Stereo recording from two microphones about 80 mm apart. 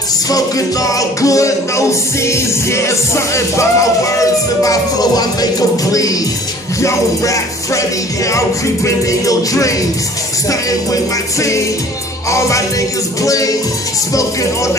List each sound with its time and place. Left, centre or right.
0.3 s music: left